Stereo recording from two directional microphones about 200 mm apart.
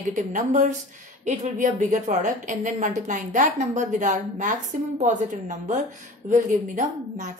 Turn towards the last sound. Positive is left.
turn(degrees=-35)  # may be behind; listen again after turning